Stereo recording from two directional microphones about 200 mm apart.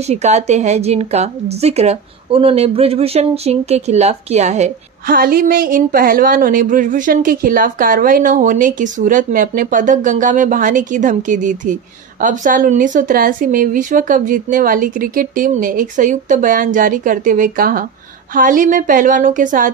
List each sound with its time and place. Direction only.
0.0 s a woman's voice: 35° right (ahead or behind)